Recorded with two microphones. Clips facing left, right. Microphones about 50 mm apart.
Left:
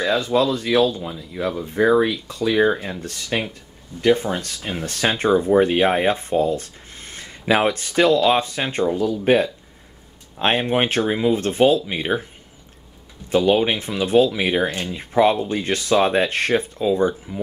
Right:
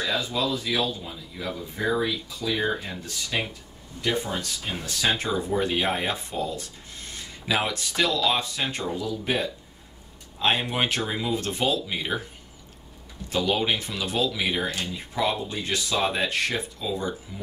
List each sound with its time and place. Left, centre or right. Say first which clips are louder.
0.3 s speech: left 8 dB; left
1.0 s speech: left 8 dB; left
1.8 s speech: left 9 dB; left
4.0 s speech: left 9 dB; left
13.3 s speech: left 7 dB; left